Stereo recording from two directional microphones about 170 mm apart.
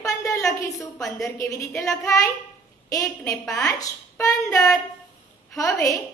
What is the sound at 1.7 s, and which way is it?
Speech, centre (ahead or behind).